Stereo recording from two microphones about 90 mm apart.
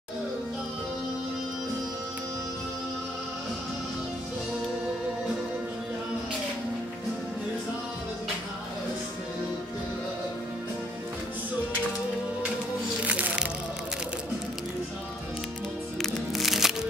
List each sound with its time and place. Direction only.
13.0 s music: 15° right (ahead or behind)
16.0 s music: centre (ahead or behind)